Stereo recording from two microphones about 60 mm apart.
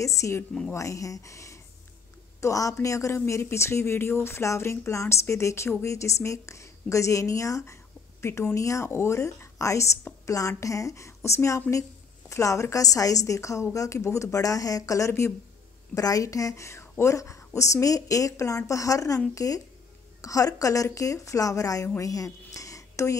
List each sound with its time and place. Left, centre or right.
0.0 s a woman's voice: left
3.3 s a woman's voice: left
15.9 s a woman's voice: left
22.0 s a sound: left